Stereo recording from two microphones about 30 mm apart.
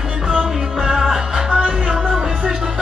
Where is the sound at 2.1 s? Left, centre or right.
Right.